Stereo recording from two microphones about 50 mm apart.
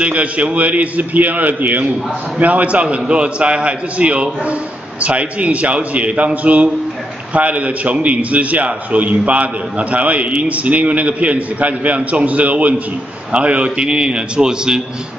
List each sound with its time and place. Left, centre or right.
0.0 s a man's voice: right